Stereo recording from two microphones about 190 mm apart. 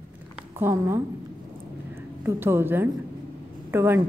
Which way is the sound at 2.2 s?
10° right (ahead or behind).